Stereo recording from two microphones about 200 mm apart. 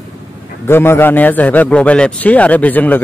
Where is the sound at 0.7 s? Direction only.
10° left (ahead or behind).